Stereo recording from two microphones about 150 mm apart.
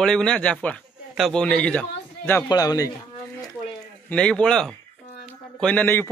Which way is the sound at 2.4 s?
25° left (ahead or behind).